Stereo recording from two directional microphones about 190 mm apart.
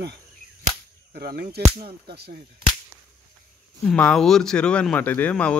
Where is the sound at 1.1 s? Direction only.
55° right (ahead or behind).